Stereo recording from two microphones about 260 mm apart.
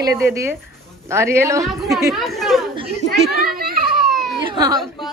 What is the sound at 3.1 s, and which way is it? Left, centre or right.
Speech, right.